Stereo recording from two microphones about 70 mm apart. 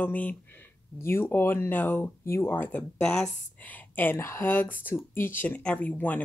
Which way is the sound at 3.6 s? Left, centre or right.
Left.